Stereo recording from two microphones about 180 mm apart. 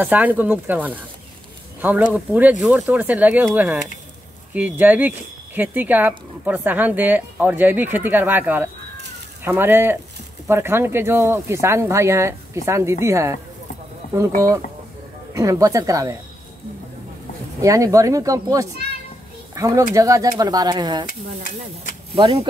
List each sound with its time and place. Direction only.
0.0 s speech: 10° right (ahead or behind)
14.0 s bird: 50° left (ahead or behind)
15.3 s speech: 20° right (ahead or behind)
17.6 s speech: 20° right (ahead or behind)
22.1 s speech: 30° right (ahead or behind)